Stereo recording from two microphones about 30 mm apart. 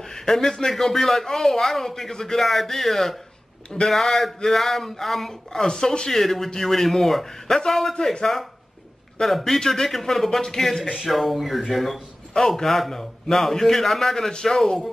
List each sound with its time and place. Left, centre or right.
0.0 s speech: centre
2.4 s speech: centre
5.3 s speech: left
9.2 s speech: centre
11.1 s speech: centre
12.4 s speech: centre